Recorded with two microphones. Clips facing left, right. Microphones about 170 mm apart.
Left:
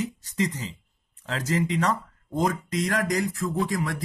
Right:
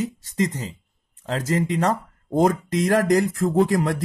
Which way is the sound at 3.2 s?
50° right (ahead or behind).